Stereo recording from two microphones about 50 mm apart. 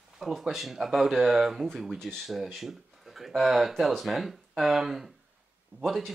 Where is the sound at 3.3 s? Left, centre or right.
Centre.